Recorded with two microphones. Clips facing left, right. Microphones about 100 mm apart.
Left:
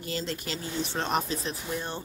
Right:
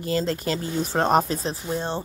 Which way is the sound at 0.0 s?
40° right (ahead or behind).